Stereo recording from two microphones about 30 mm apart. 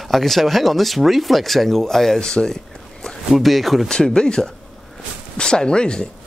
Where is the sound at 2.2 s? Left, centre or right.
Left.